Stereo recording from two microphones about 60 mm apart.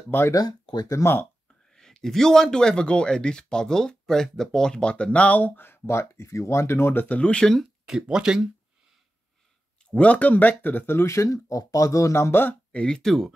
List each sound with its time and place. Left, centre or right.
0.3 s speech: left
1.7 s speech: centre; by 5.8 s left
5.9 s speech: left
7.1 s speech: centre
7.8 s speech: centre
9.8 s speech: left
11.1 s speech: left
12.7 s speech: centre